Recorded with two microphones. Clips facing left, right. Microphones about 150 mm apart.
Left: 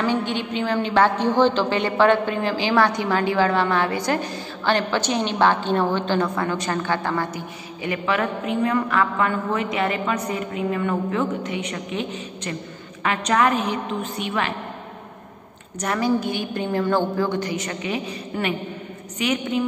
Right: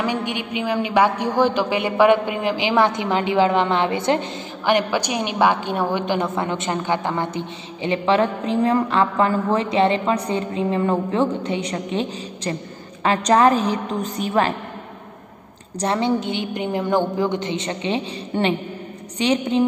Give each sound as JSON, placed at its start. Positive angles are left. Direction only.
{"t": 0.0, "sound": "a woman's voice", "side_deg": -15}
{"t": 15.8, "sound": "a woman's voice", "side_deg": -25}